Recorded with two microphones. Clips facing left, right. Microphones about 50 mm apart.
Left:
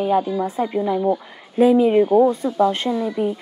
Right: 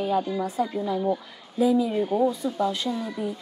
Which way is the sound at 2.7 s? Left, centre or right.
Left.